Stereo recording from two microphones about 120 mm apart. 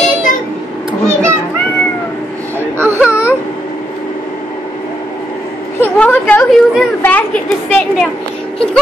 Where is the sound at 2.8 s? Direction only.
20° right (ahead or behind).